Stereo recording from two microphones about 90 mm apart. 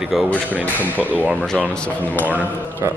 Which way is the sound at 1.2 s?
15° left (ahead or behind).